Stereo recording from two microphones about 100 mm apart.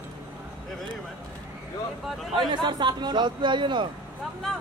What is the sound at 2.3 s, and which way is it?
Speech, 50° right (ahead or behind).